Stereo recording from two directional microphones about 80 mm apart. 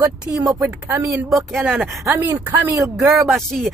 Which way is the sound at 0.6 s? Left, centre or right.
Right.